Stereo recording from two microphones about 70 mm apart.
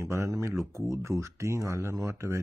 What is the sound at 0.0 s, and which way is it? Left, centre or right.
Speech, right.